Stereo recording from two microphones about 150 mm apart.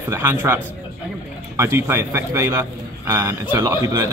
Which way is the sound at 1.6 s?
15° right (ahead or behind).